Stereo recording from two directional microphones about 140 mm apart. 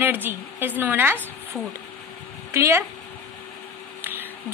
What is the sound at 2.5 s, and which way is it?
Speech, 20° right (ahead or behind).